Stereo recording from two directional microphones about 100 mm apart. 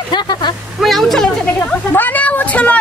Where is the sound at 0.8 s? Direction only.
Centre (ahead or behind).